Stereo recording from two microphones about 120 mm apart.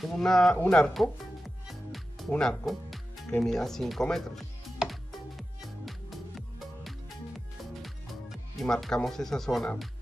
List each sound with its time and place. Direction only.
0.0 s speech: 5° left (ahead or behind)
5.6 s music: centre (ahead or behind)